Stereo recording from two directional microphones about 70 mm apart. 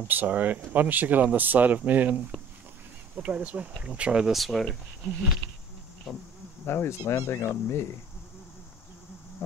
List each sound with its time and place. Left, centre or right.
0.1 s speech: right
4.3 s speech: centre
6.6 s speech: left